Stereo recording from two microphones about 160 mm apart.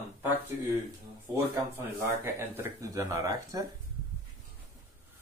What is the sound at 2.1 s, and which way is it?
Speech, 15° right (ahead or behind).